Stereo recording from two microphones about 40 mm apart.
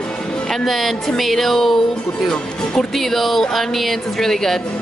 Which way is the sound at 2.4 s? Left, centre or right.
Left.